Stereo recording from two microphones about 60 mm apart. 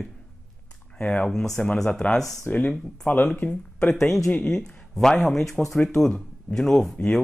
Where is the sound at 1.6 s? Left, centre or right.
Centre.